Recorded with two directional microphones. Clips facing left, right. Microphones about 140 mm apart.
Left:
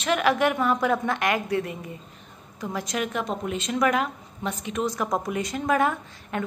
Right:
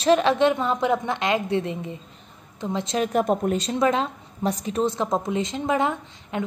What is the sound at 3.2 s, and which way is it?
A woman's voice, 45° right (ahead or behind).